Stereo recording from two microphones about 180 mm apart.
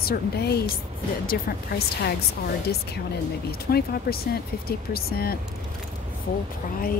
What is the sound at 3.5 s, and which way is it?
Speech, 60° left (ahead or behind).